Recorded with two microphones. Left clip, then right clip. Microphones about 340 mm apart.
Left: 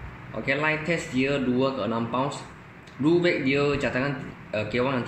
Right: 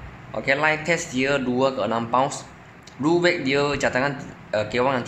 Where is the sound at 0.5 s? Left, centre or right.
Right.